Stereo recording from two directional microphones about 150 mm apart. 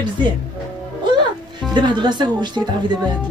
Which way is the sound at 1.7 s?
30° right (ahead or behind).